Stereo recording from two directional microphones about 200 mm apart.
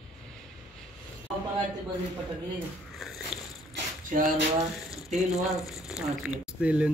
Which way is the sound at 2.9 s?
Centre (ahead or behind).